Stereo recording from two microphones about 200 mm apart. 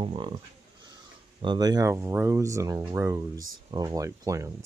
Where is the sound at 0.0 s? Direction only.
25° right (ahead or behind).